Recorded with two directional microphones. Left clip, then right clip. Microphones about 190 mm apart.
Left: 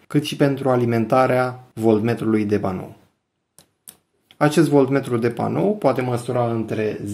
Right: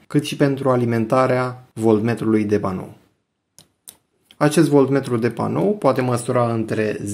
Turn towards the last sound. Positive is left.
turn(degrees=-30)  # may be behind; listen again after turning